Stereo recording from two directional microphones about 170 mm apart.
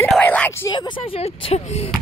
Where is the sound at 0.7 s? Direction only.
25° left (ahead or behind).